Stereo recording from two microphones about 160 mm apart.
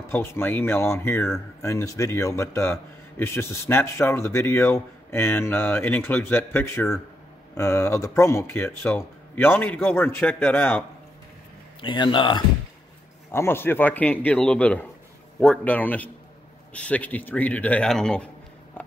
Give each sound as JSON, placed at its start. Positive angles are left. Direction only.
{"t": 0.1, "sound": "speech", "side_deg": 15}
{"t": 11.8, "sound": "speech", "side_deg": 30}
{"t": 13.3, "sound": "speech", "side_deg": 15}